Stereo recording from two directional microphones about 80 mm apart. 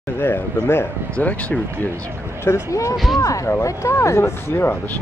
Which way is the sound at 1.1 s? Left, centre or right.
Centre.